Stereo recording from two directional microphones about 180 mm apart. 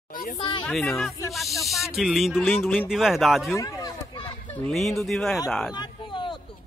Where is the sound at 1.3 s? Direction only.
Centre (ahead or behind).